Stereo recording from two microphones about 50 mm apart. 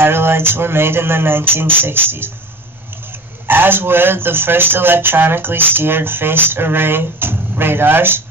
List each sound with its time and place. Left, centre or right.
0.0 s speech: right
3.4 s speech: right